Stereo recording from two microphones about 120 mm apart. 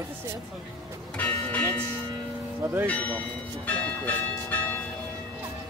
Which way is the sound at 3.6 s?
10° left (ahead or behind).